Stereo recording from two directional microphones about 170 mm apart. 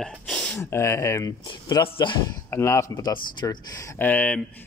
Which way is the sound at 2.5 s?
15° left (ahead or behind).